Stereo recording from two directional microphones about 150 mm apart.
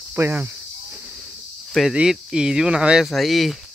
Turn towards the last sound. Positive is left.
turn(degrees=0)  # may be behind; listen again after turning